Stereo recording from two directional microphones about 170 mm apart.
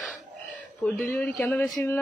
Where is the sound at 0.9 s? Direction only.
10° left (ahead or behind).